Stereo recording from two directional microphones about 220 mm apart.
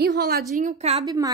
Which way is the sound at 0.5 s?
30° right (ahead or behind).